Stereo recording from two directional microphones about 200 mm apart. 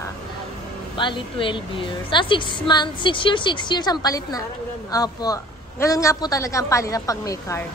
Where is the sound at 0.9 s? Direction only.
25° left (ahead or behind).